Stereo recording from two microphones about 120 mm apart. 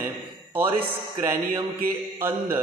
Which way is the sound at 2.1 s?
20° right (ahead or behind).